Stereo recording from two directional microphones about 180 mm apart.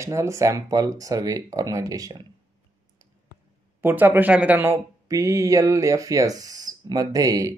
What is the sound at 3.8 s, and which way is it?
Speech, 10° right (ahead or behind).